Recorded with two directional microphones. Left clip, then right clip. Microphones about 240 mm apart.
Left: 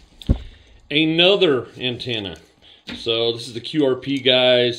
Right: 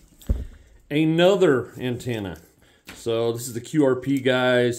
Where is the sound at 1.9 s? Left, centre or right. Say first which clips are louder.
Left 4 dB; right.